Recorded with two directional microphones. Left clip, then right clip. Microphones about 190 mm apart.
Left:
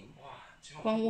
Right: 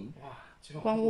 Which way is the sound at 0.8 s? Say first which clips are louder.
Right 2 dB; 65° right (ahead or behind).